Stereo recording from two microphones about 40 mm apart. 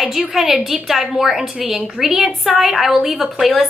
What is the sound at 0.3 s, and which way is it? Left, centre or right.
A woman's voice, centre.